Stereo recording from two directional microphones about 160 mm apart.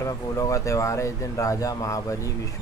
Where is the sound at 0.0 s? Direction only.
20° left (ahead or behind).